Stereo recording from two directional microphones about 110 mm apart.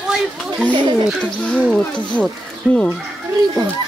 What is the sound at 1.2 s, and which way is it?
Speech, 10° left (ahead or behind).